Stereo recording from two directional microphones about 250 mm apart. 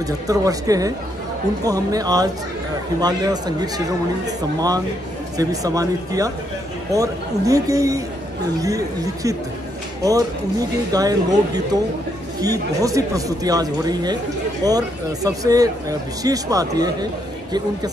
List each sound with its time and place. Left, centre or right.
0.0 s speech: centre